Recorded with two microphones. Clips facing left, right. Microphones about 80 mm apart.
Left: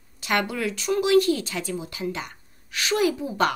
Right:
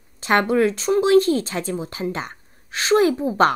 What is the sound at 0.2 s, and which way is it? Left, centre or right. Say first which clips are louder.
Speech: right 8 dB; right.